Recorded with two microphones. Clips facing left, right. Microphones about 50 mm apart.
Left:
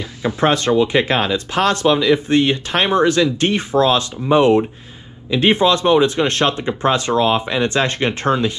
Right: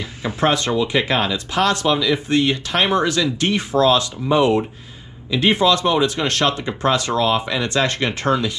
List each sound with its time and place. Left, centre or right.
0.2 s speech: left